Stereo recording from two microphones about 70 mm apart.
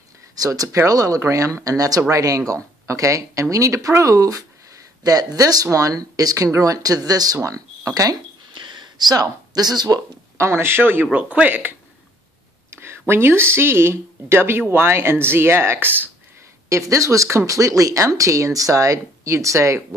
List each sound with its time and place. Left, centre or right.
0.4 s speech: right
7.3 s speech: right
8.6 s a sound: right
10.3 s speech: right
12.7 s speech: right
16.6 s speech: right